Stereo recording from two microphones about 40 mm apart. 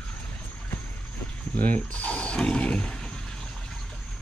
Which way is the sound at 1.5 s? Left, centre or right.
Left.